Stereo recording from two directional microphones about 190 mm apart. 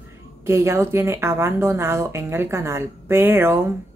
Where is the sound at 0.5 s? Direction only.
15° right (ahead or behind).